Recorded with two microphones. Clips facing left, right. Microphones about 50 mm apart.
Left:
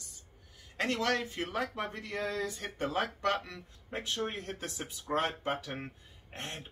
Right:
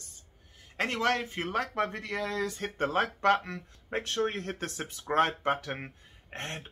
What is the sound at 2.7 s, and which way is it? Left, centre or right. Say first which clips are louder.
Speech: right 4 dB; right.